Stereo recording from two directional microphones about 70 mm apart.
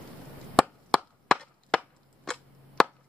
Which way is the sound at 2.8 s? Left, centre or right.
Centre.